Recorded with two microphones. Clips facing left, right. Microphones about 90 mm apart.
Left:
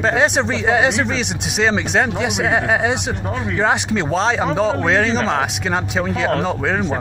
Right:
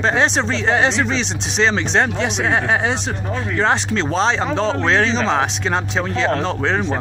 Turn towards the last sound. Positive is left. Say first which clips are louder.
# even
turn(degrees=10)  # may be behind; listen again after turning